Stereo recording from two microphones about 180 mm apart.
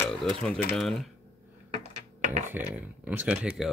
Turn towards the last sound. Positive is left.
turn(degrees=0)  # may be behind; listen again after turning